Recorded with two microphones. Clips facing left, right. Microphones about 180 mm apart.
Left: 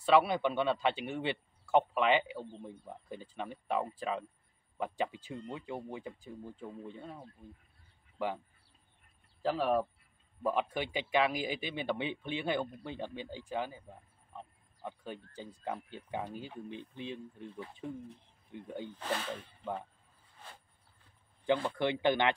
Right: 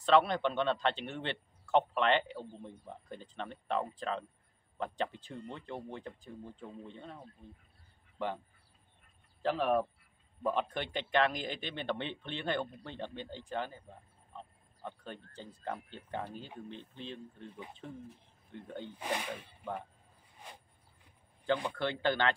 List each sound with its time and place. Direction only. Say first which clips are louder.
0.0 s a man's voice: even; 10° left (ahead or behind)
9.4 s a man's voice: even; 5° left (ahead or behind)
18.9 s speech: even; 15° right (ahead or behind)
20.3 s a sound: right 1 dB; 15° right (ahead or behind)
21.7 s a man's voice: left 3 dB; 15° left (ahead or behind)